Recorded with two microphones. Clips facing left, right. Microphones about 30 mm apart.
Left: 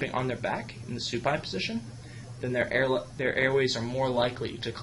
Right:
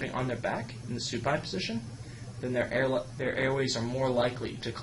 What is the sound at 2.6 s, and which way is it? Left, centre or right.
Speech, left.